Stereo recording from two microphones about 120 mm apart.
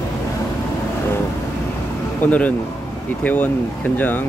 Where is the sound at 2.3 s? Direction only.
15° left (ahead or behind).